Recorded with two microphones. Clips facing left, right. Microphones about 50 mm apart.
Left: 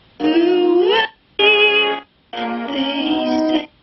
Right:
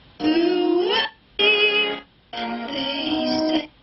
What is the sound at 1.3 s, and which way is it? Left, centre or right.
Music, left.